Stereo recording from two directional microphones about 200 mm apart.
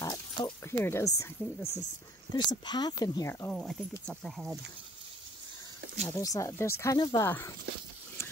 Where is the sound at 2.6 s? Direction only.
20° left (ahead or behind); by 4.5 s centre (ahead or behind).